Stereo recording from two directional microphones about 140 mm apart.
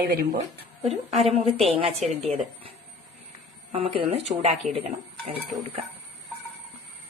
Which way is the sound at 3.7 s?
45° right (ahead or behind).